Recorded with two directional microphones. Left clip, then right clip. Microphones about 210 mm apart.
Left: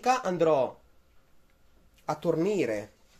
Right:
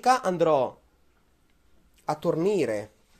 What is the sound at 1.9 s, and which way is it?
Speech, 20° right (ahead or behind).